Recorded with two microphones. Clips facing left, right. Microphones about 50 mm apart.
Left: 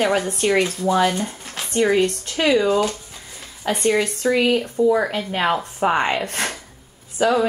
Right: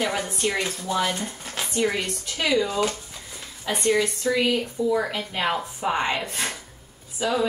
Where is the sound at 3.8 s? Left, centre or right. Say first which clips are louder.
Left 3 dB; left.